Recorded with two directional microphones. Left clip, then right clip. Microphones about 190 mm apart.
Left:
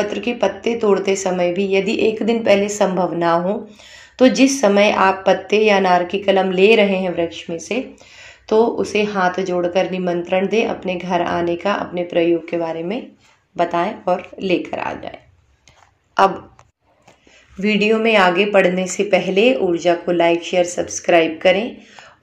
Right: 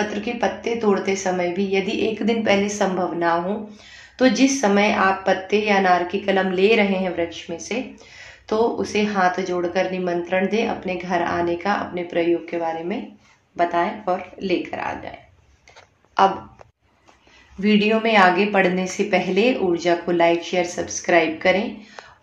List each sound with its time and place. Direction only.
0.0 s a woman's voice: 25° left (ahead or behind)
16.2 s speech: 20° left (ahead or behind)
17.6 s speech: 15° left (ahead or behind)